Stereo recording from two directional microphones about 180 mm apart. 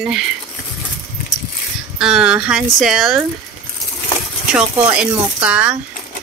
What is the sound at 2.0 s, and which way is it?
Speech, 5° right (ahead or behind).